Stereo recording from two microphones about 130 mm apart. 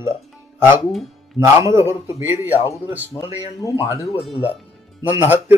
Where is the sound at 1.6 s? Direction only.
20° right (ahead or behind).